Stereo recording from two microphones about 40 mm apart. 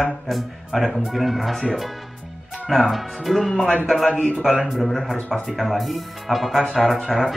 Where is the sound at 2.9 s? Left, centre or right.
Centre.